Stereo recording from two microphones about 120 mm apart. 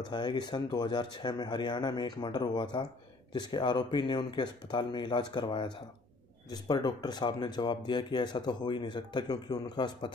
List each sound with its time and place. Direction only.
0.0 s speech: 40° left (ahead or behind)